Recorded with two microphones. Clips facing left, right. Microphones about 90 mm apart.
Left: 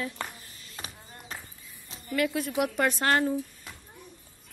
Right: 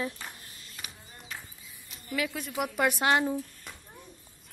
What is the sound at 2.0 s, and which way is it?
A woman's voice, centre (ahead or behind).